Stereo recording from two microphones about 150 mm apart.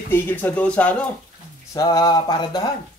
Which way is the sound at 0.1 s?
10° left (ahead or behind).